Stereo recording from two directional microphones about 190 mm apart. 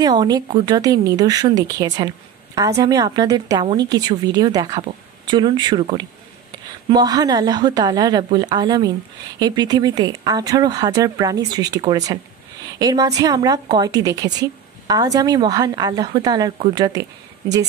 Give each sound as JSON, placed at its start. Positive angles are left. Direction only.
{"t": 0.0, "sound": "a woman's voice", "side_deg": -20}